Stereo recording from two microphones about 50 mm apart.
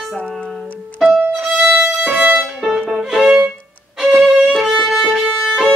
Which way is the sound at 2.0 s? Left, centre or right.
Right.